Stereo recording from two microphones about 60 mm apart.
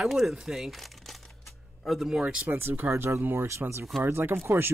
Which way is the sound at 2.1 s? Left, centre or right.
Centre.